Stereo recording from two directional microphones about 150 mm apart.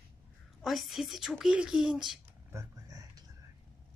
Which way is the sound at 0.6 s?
Centre (ahead or behind).